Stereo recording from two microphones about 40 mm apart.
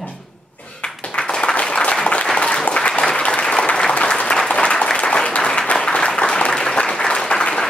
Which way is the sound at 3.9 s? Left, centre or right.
Left.